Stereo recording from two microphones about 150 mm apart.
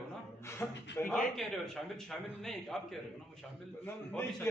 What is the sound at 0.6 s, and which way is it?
Speech, 15° left (ahead or behind).